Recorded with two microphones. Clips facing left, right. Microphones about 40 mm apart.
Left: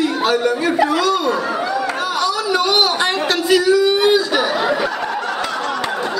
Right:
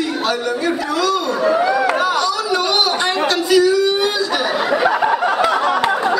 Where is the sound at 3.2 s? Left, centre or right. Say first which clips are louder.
Right 1 dB; centre.